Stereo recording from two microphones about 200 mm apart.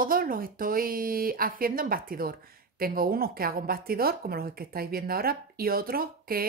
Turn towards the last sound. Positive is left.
turn(degrees=-45)  # may be behind; listen again after turning